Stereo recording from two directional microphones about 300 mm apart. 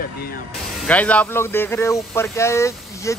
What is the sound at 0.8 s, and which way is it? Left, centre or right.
Speech, centre.